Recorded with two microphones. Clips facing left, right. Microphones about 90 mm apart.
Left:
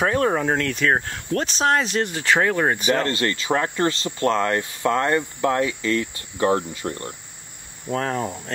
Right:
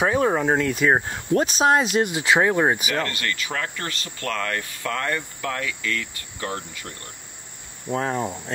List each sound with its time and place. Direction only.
0.0 s speech: 5° right (ahead or behind)
2.9 s speech: 30° left (ahead or behind)
7.9 s speech: 5° right (ahead or behind)